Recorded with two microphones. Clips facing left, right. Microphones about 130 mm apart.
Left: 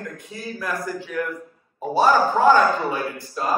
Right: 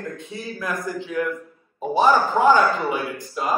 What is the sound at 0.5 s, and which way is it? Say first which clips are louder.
A man's voice: even; 20° right (ahead or behind).